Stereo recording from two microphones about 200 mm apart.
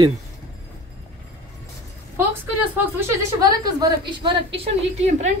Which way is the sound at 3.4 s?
20° right (ahead or behind).